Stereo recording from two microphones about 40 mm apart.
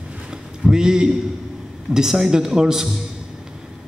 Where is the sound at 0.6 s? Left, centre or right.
Centre.